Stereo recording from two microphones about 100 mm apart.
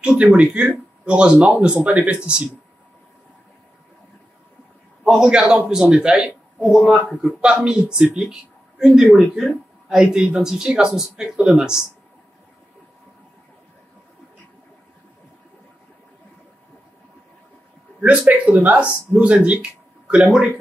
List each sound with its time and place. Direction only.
0.0 s speech: 10° right (ahead or behind)
5.0 s a man's voice: 5° right (ahead or behind)
18.0 s a man's voice: 15° right (ahead or behind)